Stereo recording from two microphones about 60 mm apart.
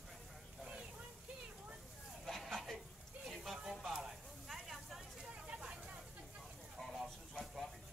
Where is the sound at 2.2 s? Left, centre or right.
Centre.